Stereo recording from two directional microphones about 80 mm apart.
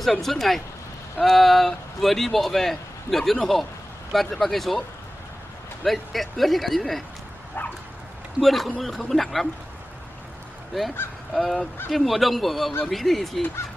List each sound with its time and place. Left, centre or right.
0.0 s speech: centre
5.9 s speech: centre
8.4 s speech: centre
11.3 s speech: centre